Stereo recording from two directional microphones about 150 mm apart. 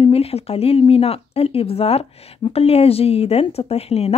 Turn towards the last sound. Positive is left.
turn(degrees=45)  # may be behind; listen again after turning